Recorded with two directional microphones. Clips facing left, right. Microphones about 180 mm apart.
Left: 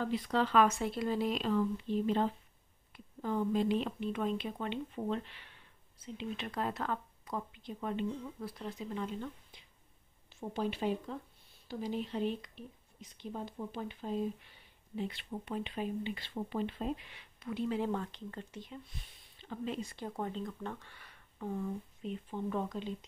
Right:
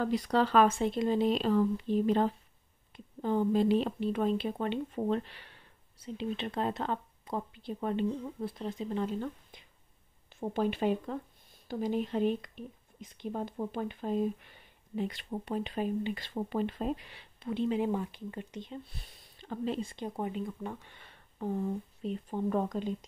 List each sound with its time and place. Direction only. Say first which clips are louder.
0.0 s a woman's voice: right 4 dB; 40° right (ahead or behind)
2.9 s a woman's voice: right 5 dB; 30° right (ahead or behind)
6.1 s speech: right 4 dB; 25° right (ahead or behind)
8.9 s speech: right 6 dB; 45° right (ahead or behind); by 17.7 s 25° right (ahead or behind)
17.7 s speech: right 4 dB; 15° right (ahead or behind)
18.7 s speech: right 5 dB; 35° right (ahead or behind)
19.9 s speech: right 3 dB; 15° right (ahead or behind)
21.0 s speech: right 5 dB; 30° right (ahead or behind)